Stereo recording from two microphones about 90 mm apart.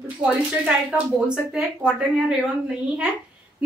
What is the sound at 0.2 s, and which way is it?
Speech, 10° right (ahead or behind).